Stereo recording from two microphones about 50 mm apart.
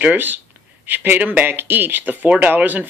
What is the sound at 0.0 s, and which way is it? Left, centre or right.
Speech, right.